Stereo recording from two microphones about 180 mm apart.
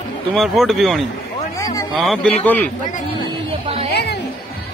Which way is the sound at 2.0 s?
Centre (ahead or behind).